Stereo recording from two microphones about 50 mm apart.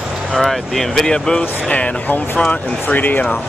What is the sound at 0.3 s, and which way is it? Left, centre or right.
Speech, centre.